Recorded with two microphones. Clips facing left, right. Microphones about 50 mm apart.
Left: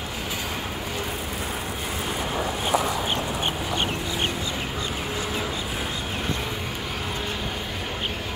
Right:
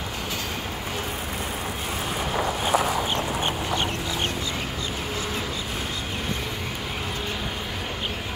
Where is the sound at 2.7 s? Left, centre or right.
Right.